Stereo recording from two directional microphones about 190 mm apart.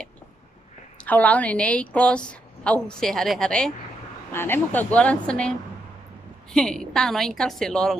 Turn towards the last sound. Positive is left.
turn(degrees=0)  # may be behind; listen again after turning